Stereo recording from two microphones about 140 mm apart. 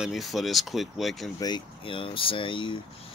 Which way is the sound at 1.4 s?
35° left (ahead or behind).